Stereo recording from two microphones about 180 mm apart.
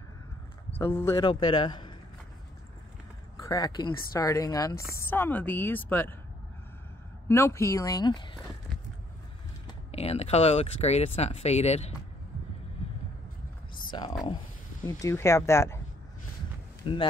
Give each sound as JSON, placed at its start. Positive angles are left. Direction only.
{"t": 0.7, "sound": "a woman's voice", "side_deg": 10}
{"t": 1.2, "sound": "speech", "side_deg": 25}
{"t": 3.3, "sound": "a woman's voice", "side_deg": 20}
{"t": 7.2, "sound": "a woman's voice", "side_deg": 15}
{"t": 9.8, "sound": "speech", "side_deg": 35}
{"t": 13.8, "sound": "a sound", "side_deg": 25}
{"t": 14.9, "sound": "a woman's voice", "side_deg": 15}
{"t": 16.8, "sound": "speech", "side_deg": 30}